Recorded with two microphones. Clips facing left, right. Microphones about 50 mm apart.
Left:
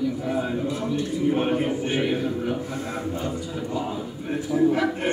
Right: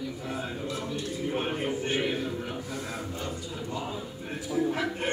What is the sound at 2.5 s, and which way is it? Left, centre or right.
Speech, left.